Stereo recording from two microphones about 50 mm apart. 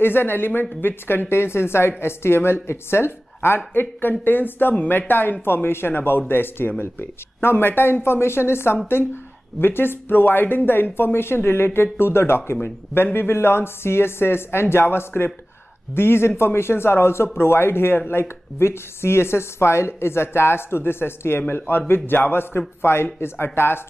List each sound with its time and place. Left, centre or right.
0.0 s a woman's voice: left